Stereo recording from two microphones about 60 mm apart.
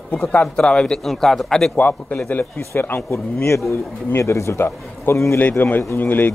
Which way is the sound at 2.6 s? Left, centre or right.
Left.